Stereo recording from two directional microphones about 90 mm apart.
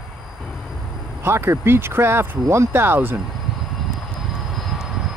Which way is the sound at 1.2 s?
30° right (ahead or behind).